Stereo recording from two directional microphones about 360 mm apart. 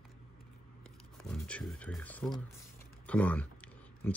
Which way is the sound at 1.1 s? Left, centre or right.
Centre.